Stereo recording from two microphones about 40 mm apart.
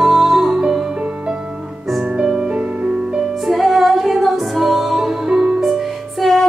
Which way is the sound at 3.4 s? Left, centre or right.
Centre.